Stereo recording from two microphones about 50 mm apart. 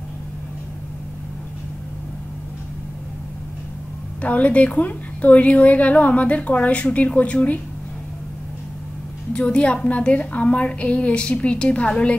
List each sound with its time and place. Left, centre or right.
4.2 s a woman's voice: left
9.3 s a woman's voice: left